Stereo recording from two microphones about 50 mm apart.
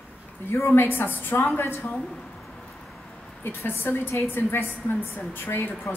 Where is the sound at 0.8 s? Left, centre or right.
Left.